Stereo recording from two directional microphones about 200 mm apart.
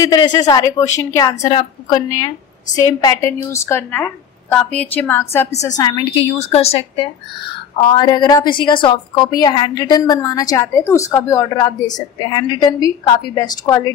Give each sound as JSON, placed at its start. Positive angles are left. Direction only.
{"t": 0.0, "sound": "a woman's voice", "side_deg": 20}
{"t": 6.3, "sound": "a woman's voice", "side_deg": 30}